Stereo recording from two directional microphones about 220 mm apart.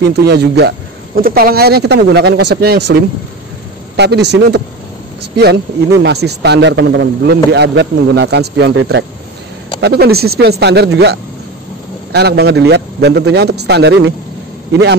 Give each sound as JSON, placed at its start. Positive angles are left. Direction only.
{"t": 0.0, "sound": "a man's voice", "side_deg": -50}